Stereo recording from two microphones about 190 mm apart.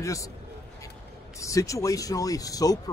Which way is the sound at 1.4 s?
15° left (ahead or behind).